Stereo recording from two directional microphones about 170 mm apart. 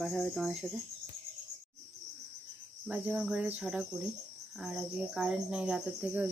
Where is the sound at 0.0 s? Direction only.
5° left (ahead or behind).